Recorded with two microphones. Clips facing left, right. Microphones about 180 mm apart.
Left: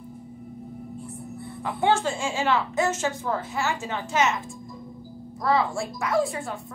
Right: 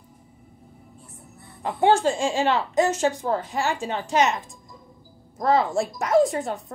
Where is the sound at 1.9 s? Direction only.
35° right (ahead or behind).